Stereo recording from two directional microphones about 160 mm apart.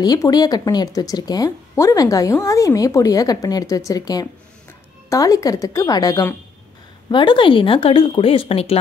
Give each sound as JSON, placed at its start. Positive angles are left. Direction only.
{"t": 0.0, "sound": "speech", "side_deg": 25}